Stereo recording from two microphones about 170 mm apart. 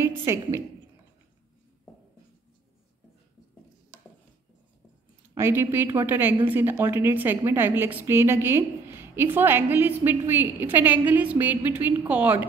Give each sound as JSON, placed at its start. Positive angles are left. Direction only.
{"t": 0.0, "sound": "a woman's voice", "side_deg": -15}
{"t": 5.3, "sound": "a woman's voice", "side_deg": -15}